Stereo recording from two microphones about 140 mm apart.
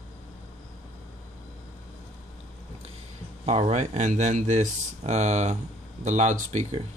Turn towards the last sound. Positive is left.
turn(degrees=-60)  # may be behind; listen again after turning